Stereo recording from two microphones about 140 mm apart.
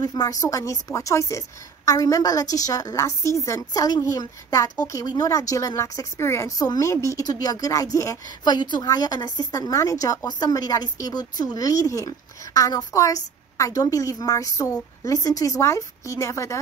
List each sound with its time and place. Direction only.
0.0 s a woman's voice: 25° left (ahead or behind)